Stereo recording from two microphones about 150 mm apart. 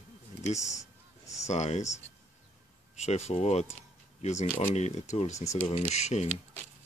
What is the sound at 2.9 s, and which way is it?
Speech, 45° left (ahead or behind).